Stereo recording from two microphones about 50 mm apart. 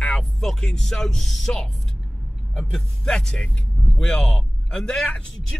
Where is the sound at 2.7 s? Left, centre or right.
Centre.